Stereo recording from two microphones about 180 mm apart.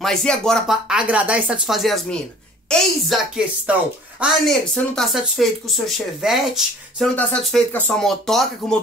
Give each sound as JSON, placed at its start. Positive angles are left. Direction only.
{"t": 0.0, "sound": "speech", "side_deg": 0}
{"t": 7.2, "sound": "speech", "side_deg": 10}